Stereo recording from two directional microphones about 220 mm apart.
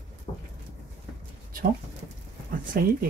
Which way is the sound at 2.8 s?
40° right (ahead or behind).